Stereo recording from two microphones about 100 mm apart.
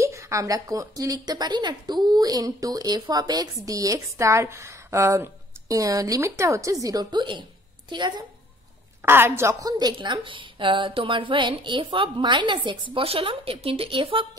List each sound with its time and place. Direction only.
0.0 s a woman's voice: 30° right (ahead or behind); by 7.4 s 50° right (ahead or behind)
9.0 s a woman's voice: 25° right (ahead or behind); by 14.2 s 65° right (ahead or behind)